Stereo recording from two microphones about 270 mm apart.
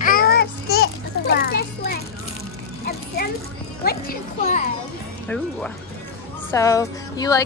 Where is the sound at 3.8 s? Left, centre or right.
Left.